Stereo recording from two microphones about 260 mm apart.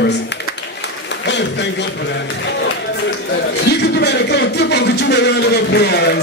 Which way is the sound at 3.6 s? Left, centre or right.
Left.